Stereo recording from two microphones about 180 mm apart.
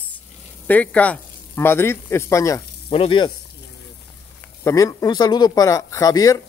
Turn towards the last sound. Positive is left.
turn(degrees=20)  # may be behind; listen again after turning